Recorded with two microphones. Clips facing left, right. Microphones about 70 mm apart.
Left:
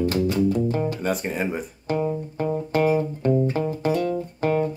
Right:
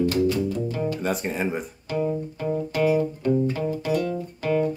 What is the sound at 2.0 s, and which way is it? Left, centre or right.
Music, left.